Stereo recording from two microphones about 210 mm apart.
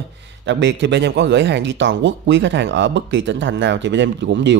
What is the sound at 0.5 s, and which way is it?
Speech, 60° right (ahead or behind).